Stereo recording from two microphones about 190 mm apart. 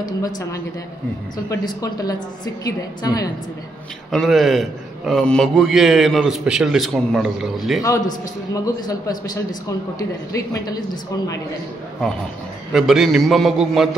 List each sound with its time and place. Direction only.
0.0 s a woman's voice: 20° left (ahead or behind)
4.1 s a man's voice: centre (ahead or behind)
8.6 s a woman's voice: 20° left (ahead or behind)
12.7 s a man's voice: centre (ahead or behind)